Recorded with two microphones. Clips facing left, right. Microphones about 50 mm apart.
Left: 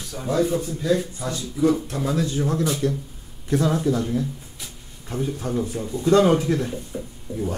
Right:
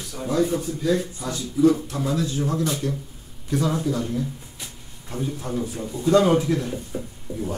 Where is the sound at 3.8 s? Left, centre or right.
Centre.